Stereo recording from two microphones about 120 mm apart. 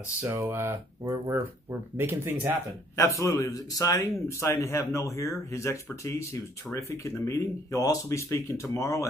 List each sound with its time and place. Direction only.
0.2 s speech: 20° right (ahead or behind)
3.0 s a man's voice: 25° left (ahead or behind)